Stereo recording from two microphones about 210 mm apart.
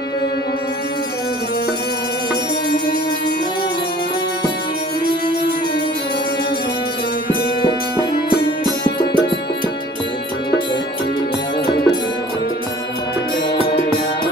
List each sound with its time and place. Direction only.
11.6 s music: 20° left (ahead or behind)